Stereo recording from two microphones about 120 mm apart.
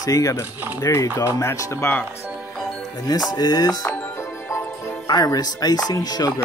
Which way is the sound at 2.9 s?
35° left (ahead or behind).